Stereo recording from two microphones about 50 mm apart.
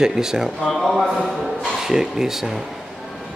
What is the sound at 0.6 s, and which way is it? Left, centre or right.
Speech, centre.